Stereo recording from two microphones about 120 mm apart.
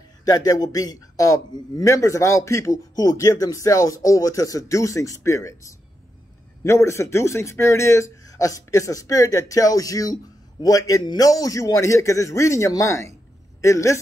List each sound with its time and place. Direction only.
0.2 s a man's voice: 30° left (ahead or behind)